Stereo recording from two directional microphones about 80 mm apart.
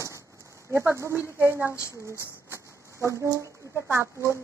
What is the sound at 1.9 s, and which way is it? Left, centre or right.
Speech, right.